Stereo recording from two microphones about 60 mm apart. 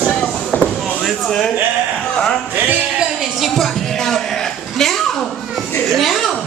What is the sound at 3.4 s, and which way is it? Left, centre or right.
Music, centre.